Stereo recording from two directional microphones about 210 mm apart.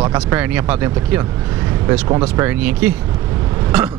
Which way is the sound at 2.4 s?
5° right (ahead or behind).